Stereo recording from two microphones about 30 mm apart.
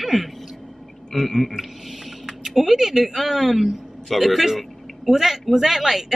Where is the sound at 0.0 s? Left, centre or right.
Centre.